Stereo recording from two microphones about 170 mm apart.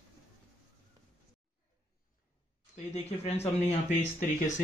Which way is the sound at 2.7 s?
40° left (ahead or behind).